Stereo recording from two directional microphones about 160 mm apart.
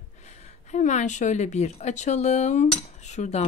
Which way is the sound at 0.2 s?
45° left (ahead or behind).